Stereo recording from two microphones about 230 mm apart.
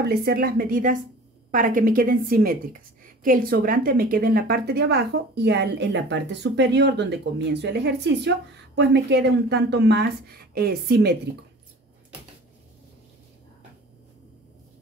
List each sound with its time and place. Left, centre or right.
0.1 s a woman's voice: right